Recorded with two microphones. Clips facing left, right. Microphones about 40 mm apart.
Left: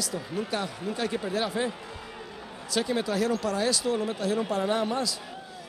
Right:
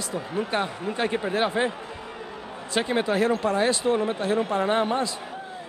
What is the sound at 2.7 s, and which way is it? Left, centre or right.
A man's voice, right.